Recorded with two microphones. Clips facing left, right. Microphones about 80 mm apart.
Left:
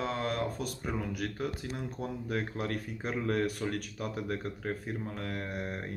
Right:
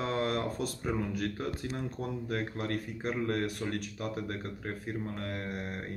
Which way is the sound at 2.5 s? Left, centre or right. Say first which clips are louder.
Even; centre.